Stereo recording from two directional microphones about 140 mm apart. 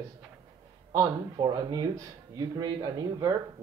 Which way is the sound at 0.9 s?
30° right (ahead or behind).